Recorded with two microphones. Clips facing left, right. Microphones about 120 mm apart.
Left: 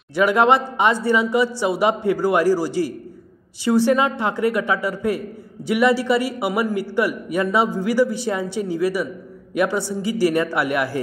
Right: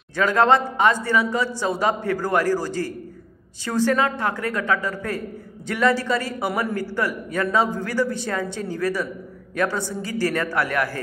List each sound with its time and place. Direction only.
0.1 s a man's voice: 15° left (ahead or behind)